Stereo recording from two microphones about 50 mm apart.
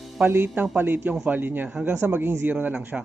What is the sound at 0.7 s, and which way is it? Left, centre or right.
Speech, right.